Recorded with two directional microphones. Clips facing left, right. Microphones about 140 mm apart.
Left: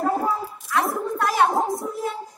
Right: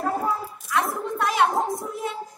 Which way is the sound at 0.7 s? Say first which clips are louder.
Left 2 dB; centre (ahead or behind).